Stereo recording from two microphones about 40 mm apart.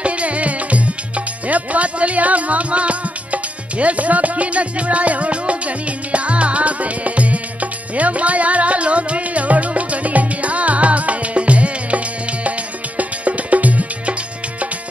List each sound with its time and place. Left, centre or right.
0.0 s music: right